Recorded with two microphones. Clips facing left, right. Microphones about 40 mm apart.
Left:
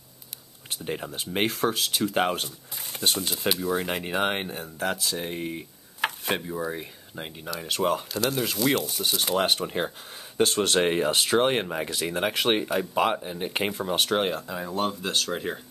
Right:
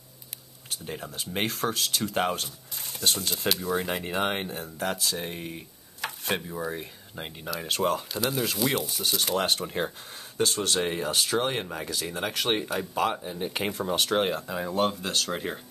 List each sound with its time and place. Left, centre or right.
0.9 s speech: centre
9.0 s speech: centre
10.4 s speech: left
12.4 s speech: centre
13.7 s speech: centre
14.2 s speech: centre